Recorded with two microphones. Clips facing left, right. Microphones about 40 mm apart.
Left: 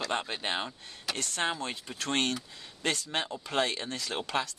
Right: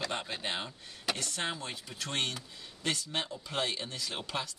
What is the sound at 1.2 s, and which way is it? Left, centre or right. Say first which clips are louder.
Speech: left 4 dB; left.